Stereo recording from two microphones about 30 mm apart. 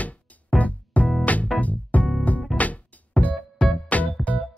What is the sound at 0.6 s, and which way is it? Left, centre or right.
Music, left.